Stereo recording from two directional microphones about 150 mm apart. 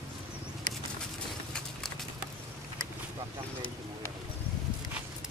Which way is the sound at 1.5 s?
5° left (ahead or behind).